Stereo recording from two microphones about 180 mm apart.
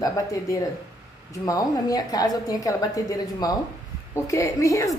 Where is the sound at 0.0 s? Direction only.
20° left (ahead or behind).